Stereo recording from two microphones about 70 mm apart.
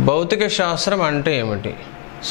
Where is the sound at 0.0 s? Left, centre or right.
Centre.